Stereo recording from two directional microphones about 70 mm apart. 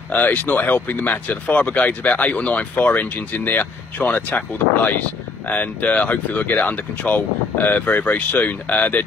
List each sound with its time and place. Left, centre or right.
0.1 s speech: left